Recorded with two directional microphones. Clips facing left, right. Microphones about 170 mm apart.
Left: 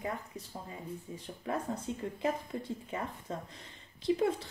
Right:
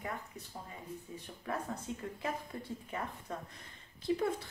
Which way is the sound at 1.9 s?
25° left (ahead or behind).